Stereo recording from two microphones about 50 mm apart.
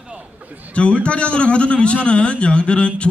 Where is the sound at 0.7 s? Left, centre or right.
Left.